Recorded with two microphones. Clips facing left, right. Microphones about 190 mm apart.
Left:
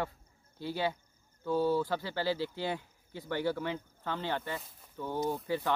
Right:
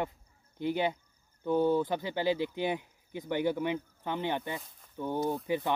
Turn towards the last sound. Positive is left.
turn(degrees=-20)  # may be behind; listen again after turning